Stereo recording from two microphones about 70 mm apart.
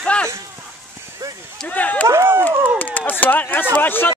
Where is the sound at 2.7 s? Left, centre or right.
Left.